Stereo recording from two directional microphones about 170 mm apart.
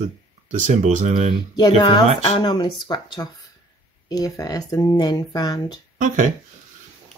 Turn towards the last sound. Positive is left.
turn(degrees=-50)  # may be behind; listen again after turning